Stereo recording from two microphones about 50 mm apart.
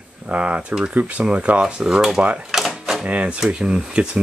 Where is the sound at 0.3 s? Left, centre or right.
Right.